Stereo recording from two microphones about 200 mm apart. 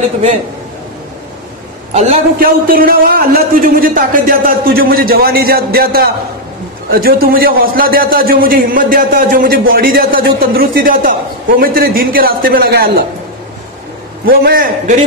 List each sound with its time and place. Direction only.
2.3 s speech: 45° right (ahead or behind)
14.2 s speech: 50° right (ahead or behind)